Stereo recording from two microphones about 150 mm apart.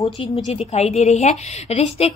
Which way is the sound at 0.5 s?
45° left (ahead or behind).